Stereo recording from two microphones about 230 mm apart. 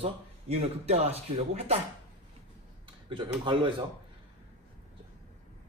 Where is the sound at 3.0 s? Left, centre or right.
Right.